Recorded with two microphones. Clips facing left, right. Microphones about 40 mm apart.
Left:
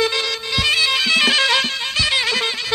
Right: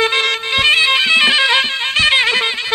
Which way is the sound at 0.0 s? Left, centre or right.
Right.